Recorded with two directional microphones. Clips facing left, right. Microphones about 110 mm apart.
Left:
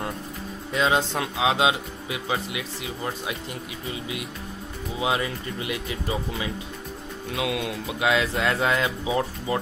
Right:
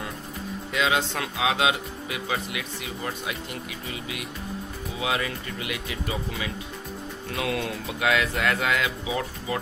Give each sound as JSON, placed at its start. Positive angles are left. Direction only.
{"t": 0.7, "sound": "speech", "side_deg": 30}
{"t": 5.0, "sound": "speech", "side_deg": 25}
{"t": 7.3, "sound": "speech", "side_deg": 10}
{"t": 8.1, "sound": "speech", "side_deg": 25}